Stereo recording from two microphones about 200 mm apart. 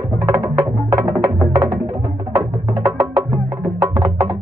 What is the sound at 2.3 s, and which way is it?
Music, 25° right (ahead or behind).